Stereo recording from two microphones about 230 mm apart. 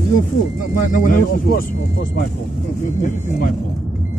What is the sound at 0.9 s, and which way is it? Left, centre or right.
Speech, left.